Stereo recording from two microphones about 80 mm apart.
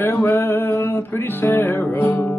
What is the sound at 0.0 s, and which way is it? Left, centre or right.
Music, left.